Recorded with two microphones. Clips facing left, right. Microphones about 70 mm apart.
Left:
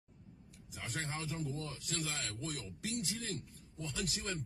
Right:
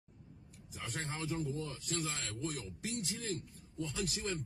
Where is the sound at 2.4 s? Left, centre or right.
Right.